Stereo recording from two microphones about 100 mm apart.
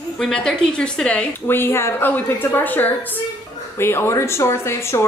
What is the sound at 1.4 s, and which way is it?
A woman's voice, 25° left (ahead or behind).